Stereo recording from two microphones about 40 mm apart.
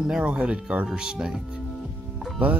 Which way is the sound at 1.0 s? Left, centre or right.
Centre.